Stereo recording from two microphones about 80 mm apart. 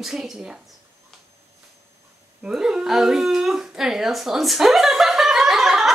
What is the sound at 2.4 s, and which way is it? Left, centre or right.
Speech, centre.